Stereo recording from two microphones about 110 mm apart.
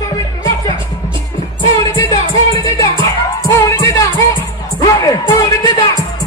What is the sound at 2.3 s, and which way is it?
Music, 35° left (ahead or behind).